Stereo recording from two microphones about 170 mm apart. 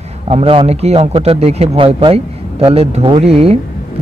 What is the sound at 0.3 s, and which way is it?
Speech, 35° right (ahead or behind).